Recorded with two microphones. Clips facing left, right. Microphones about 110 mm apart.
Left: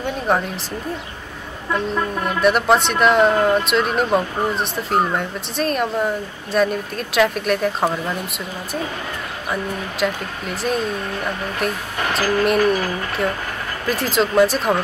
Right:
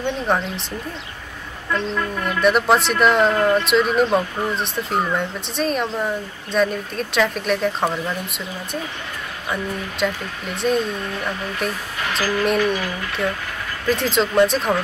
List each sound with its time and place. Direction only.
0.3 s speech: centre (ahead or behind)
2.0 s speech: 25° left (ahead or behind)
2.4 s speech: centre (ahead or behind)
9.5 s speech: centre (ahead or behind)
12.1 s speech: 40° left (ahead or behind)
13.8 s speech: centre (ahead or behind)